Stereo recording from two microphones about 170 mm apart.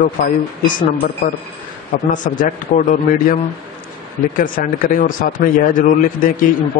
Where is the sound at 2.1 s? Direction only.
50° left (ahead or behind).